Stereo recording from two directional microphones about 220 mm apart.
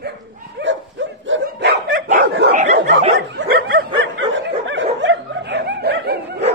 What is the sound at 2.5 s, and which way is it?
Bow-wow, 30° right (ahead or behind).